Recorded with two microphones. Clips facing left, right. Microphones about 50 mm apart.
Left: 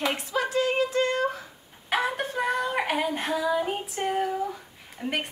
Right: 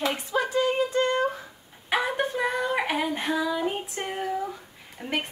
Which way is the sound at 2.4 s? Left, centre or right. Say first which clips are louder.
Left 3 dB; centre.